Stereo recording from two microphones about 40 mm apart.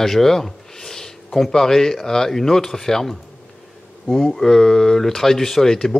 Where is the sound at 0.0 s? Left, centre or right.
Centre.